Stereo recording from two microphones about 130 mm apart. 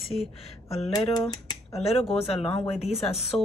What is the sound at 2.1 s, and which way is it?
Speech, 45° left (ahead or behind).